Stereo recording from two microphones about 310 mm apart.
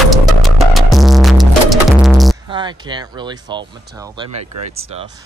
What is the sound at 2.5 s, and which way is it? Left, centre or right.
Speech, centre.